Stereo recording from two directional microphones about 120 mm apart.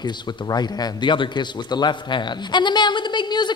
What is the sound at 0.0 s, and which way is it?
Speech, 35° left (ahead or behind).